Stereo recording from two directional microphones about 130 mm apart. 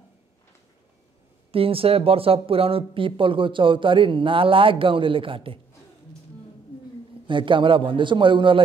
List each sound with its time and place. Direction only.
1.5 s speech: 45° right (ahead or behind)
7.2 s speech: 40° right (ahead or behind)